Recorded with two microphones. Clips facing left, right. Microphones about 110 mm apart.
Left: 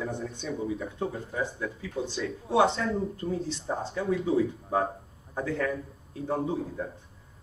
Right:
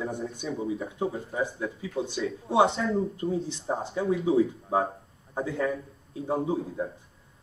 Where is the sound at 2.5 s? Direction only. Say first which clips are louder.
Right 1 dB; 20° right (ahead or behind).